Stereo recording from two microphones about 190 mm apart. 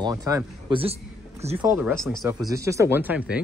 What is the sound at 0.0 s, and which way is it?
Speech, 20° right (ahead or behind).